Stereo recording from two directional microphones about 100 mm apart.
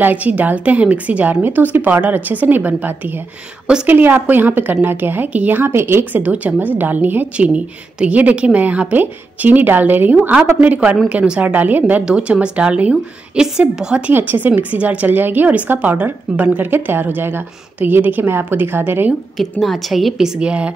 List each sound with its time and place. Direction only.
0.0 s a woman's voice: 15° right (ahead or behind)
19.6 s a woman's voice: centre (ahead or behind)